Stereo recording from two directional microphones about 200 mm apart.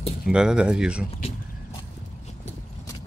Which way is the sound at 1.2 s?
30° left (ahead or behind).